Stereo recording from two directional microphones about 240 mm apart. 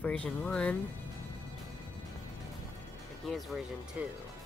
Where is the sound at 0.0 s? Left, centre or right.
Centre.